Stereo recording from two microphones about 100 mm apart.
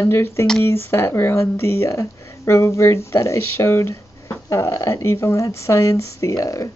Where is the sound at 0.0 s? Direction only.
25° left (ahead or behind).